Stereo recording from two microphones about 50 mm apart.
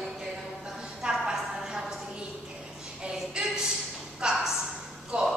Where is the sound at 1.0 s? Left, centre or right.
Centre.